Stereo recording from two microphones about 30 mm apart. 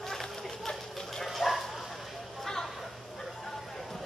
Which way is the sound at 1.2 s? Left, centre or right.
Centre.